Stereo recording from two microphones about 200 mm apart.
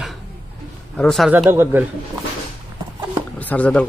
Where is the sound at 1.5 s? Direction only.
10° right (ahead or behind).